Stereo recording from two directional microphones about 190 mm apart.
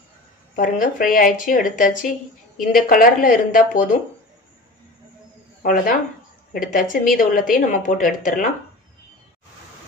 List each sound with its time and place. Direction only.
0.6 s speech: 45° left (ahead or behind)
5.6 s speech: 45° left (ahead or behind)